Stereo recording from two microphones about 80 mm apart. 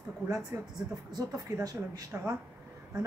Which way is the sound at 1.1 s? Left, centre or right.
Right.